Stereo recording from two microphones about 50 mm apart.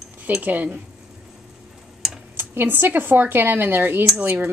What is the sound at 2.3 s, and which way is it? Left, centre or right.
Speech, right.